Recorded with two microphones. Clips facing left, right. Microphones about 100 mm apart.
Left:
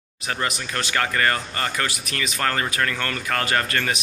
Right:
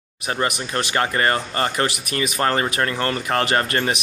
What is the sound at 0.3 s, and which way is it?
A man's voice, 25° right (ahead or behind).